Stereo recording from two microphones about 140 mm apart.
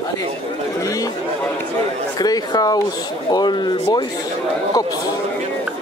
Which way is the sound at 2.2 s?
25° left (ahead or behind).